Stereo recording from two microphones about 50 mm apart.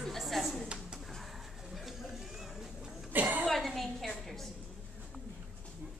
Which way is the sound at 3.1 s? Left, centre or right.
Right.